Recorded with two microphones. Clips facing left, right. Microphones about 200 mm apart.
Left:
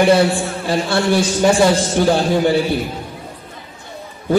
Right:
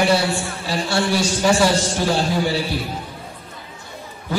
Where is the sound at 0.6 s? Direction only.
55° left (ahead or behind).